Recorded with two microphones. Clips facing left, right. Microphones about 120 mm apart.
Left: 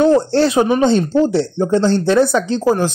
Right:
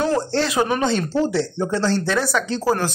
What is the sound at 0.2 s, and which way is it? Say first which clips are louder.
A woman's voice: left 6 dB; 30° left (ahead or behind).